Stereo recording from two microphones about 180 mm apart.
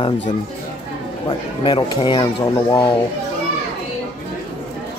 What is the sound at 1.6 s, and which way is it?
Speech, 25° left (ahead or behind).